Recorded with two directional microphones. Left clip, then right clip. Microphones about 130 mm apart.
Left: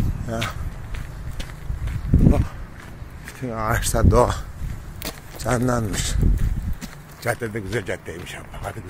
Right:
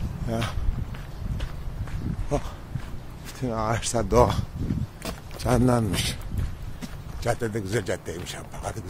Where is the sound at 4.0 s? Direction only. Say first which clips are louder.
Left 2 dB; centre (ahead or behind).